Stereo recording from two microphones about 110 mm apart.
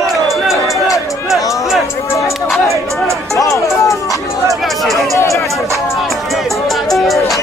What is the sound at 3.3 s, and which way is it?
Music, 30° left (ahead or behind).